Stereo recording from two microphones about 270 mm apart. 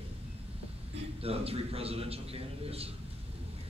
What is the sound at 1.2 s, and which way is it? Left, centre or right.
A man's voice, right.